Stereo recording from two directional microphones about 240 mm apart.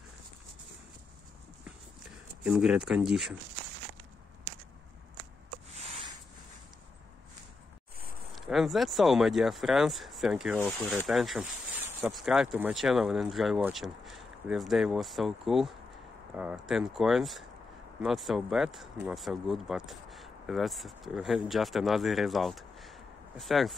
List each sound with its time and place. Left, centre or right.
2.4 s speech: centre
5.7 s a sound: right
8.4 s speech: centre